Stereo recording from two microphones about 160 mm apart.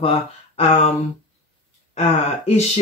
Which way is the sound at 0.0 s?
35° left (ahead or behind).